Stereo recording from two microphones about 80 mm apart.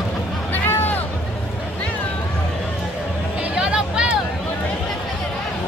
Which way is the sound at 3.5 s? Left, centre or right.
Centre.